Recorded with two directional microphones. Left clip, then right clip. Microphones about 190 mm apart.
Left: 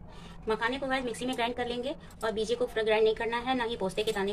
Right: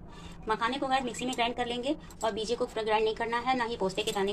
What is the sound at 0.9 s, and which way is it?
Speech, centre (ahead or behind).